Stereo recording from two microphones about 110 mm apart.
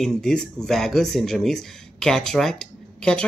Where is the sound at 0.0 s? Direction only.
5° left (ahead or behind).